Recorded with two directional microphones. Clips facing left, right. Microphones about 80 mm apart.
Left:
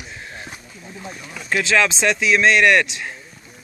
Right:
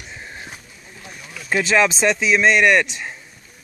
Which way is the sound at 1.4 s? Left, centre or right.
Centre.